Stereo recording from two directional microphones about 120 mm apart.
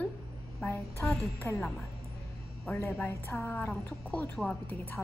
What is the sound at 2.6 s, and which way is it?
A woman's voice, 20° left (ahead or behind).